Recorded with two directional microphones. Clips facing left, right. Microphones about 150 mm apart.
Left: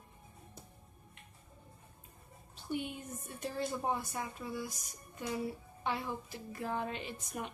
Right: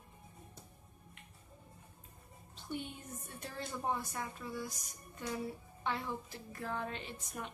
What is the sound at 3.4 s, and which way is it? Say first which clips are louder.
A woman's voice: left 5 dB; 10° left (ahead or behind).